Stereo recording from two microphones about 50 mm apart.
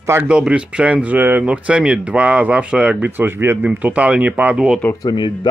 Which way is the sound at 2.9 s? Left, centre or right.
Right.